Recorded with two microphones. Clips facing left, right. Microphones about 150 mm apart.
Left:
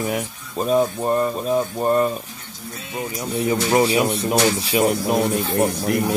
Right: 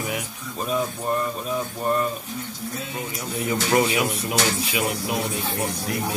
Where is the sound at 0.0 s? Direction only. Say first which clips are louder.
Left 5 dB; 40° left (ahead or behind).